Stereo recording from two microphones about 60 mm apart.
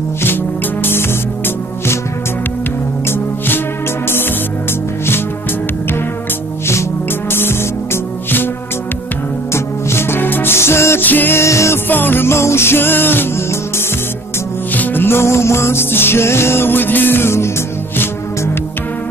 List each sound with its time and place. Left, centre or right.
0.8 s music: left
3.1 s music: left
6.7 s music: left
9.5 s music: left
11.0 s music: left
11.3 s music: left
11.9 s music: left